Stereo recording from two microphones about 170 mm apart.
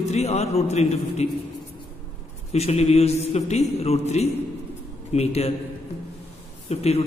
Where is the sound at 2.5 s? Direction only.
40° left (ahead or behind).